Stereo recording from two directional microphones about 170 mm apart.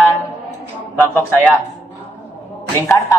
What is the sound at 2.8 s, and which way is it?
Music, 15° left (ahead or behind).